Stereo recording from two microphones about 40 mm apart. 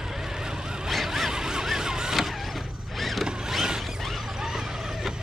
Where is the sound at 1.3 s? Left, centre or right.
Centre.